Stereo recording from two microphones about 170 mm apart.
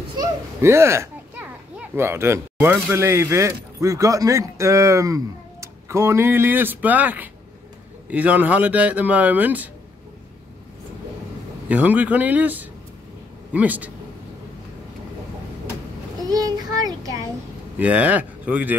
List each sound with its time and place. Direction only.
0.2 s a child's voice: 15° right (ahead or behind)
11.7 s a man's voice: 10° right (ahead or behind)
16.3 s child singing: 20° right (ahead or behind)
17.7 s speech: 10° right (ahead or behind)